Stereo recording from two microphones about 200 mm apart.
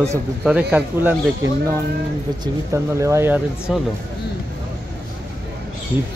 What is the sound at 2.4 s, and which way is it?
Speech, 15° right (ahead or behind).